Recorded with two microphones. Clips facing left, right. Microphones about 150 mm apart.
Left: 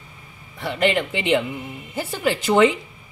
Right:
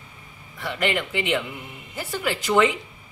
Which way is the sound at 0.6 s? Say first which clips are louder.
Left 5 dB; 25° left (ahead or behind).